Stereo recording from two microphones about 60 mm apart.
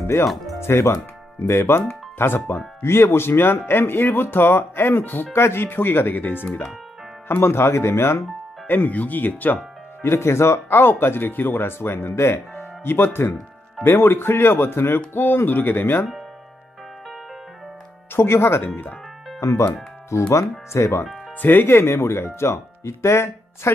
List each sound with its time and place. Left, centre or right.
0.0 s speech: left
8.6 s speech: left
10.0 s speech: left
18.1 s speech: left
19.4 s speech: left
21.4 s speech: left